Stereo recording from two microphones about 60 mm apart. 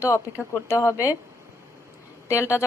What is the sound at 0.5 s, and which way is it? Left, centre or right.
Speech, left.